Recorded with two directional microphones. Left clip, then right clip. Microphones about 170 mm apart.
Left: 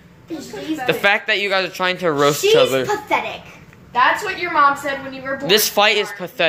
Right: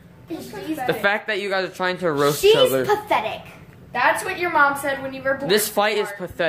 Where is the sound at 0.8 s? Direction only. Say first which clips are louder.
Left 5 dB; 5° right (ahead or behind).